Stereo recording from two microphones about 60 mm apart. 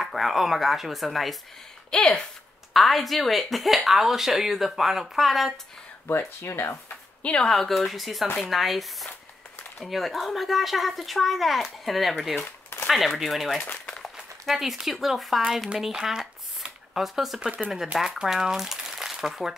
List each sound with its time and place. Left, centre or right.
0.0 s speech: centre
1.9 s speech: centre
2.7 s speech: centre
6.0 s speech: left
7.2 s speech: centre
7.5 s speech: centre
12.4 s a sound: left
12.8 s speech: centre
17.4 s speech: right
17.9 s speech: centre